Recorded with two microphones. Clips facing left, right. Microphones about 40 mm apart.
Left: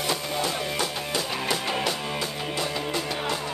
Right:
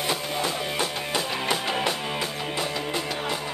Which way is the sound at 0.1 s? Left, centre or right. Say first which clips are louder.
Left 1 dB; centre.